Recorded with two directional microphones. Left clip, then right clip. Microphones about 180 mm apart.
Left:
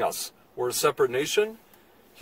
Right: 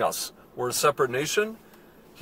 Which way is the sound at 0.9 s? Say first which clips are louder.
Left 1 dB; 5° right (ahead or behind).